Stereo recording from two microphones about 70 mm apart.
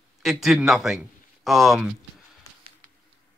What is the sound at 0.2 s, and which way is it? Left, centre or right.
A man's voice, centre.